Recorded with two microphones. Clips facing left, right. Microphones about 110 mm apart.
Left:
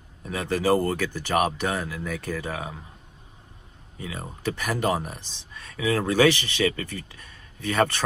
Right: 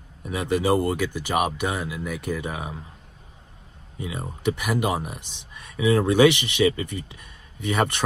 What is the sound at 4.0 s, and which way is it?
Speech, 15° right (ahead or behind).